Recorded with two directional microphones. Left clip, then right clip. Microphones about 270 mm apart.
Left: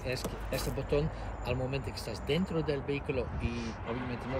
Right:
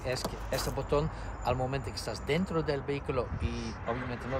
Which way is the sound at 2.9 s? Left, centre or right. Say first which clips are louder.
Right 1 dB; right.